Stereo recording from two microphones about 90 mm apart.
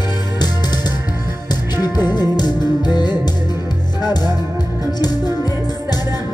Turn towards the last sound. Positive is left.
turn(degrees=50)  # may be behind; listen again after turning